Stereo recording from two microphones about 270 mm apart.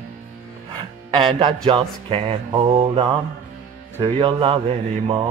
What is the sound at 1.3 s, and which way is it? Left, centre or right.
Mantra, centre.